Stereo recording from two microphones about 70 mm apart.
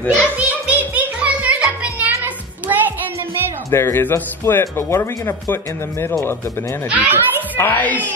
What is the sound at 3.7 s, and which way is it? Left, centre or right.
Speech, left.